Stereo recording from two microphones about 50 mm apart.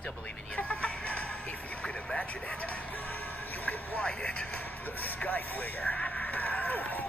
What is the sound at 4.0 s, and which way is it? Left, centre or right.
Speech, left.